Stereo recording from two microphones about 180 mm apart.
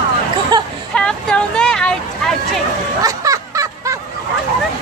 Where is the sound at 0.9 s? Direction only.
5° left (ahead or behind).